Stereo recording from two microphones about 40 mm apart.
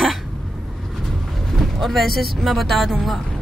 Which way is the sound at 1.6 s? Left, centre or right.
Centre.